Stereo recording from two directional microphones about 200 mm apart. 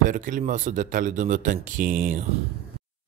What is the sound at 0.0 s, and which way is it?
Speech, 40° right (ahead or behind).